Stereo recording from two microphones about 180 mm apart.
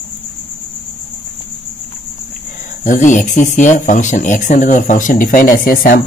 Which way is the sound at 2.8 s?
45° left (ahead or behind).